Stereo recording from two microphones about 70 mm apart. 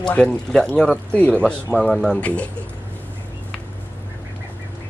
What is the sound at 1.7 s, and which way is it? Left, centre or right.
Speech, centre.